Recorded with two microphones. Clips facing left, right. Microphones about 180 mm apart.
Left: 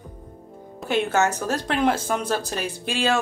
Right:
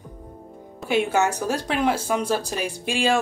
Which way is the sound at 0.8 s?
10° right (ahead or behind).